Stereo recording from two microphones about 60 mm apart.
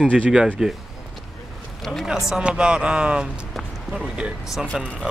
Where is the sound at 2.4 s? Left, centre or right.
Centre.